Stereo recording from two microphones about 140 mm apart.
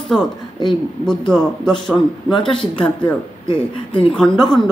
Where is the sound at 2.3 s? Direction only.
35° left (ahead or behind).